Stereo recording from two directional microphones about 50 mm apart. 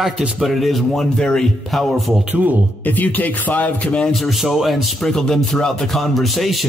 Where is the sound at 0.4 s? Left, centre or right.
Centre.